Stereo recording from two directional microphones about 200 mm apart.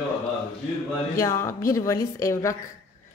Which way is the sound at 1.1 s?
15° left (ahead or behind).